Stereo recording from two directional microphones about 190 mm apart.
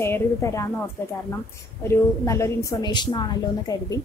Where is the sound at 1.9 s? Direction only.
15° left (ahead or behind).